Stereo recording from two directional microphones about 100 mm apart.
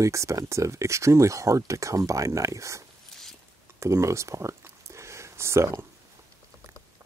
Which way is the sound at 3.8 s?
30° right (ahead or behind).